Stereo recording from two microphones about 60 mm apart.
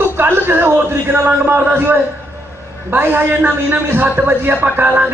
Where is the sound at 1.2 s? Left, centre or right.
Right.